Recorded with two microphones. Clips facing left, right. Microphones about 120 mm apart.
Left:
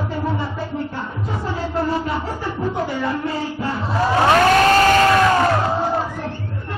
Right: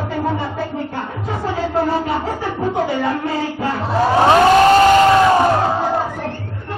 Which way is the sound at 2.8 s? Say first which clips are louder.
Right 3 dB; 65° right (ahead or behind).